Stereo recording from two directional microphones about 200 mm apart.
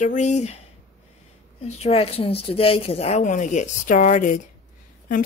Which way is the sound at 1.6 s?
35° left (ahead or behind).